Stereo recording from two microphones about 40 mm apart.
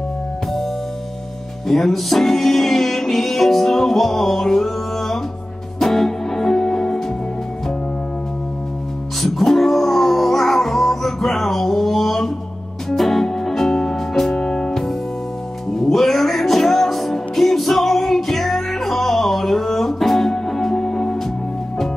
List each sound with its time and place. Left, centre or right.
1.7 s music: centre
9.2 s music: centre
14.3 s music: centre
15.9 s music: centre